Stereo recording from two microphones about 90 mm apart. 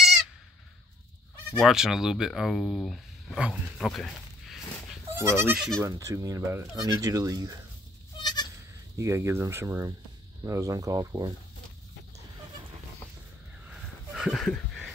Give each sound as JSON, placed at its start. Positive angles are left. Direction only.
{"t": 1.6, "sound": "speech", "side_deg": -5}
{"t": 3.3, "sound": "speech", "side_deg": -10}
{"t": 3.8, "sound": "a sound", "side_deg": 0}
{"t": 5.1, "sound": "goat", "side_deg": -25}
{"t": 5.8, "sound": "speech", "side_deg": -30}
{"t": 8.2, "sound": "goat", "side_deg": 50}
{"t": 8.9, "sound": "speech", "side_deg": -30}
{"t": 14.1, "sound": "a sound", "side_deg": 0}